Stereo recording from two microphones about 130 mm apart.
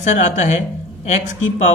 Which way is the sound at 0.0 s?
65° left (ahead or behind).